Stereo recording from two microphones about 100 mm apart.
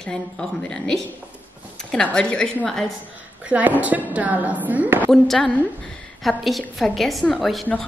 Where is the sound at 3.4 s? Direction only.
15° right (ahead or behind).